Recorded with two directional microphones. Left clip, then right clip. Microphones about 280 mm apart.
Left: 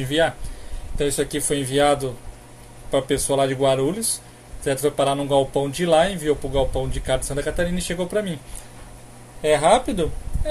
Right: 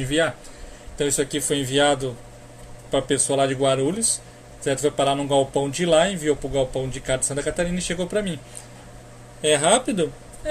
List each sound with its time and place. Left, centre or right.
0.0 s speech: centre
9.4 s speech: centre